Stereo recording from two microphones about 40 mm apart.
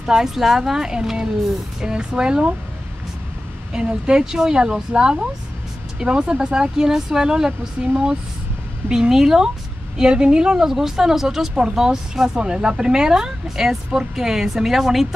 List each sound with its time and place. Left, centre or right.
0.0 s speech: centre
0.7 s speech: centre
3.7 s speech: right
9.1 s speech: centre
12.4 s speech: right